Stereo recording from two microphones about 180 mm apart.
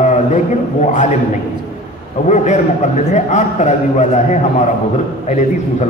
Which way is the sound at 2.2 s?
40° left (ahead or behind).